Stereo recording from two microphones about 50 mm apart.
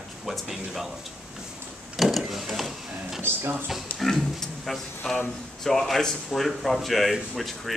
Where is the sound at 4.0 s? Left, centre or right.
Centre.